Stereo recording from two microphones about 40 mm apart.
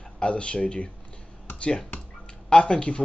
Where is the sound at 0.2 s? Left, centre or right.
Left.